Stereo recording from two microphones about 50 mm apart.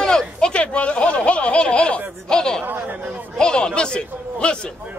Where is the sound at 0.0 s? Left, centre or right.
Centre.